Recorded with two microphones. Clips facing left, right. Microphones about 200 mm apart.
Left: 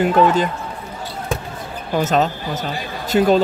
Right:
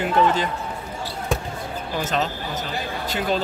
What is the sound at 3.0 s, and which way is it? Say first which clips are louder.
Speech: left 11 dB; 45° left (ahead or behind).